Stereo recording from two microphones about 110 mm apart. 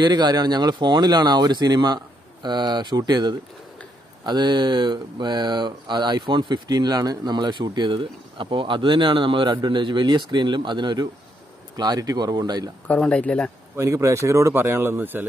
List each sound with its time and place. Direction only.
0.0 s speech: 40° right (ahead or behind)
12.8 s speech: 10° left (ahead or behind)
13.7 s speech: 30° right (ahead or behind)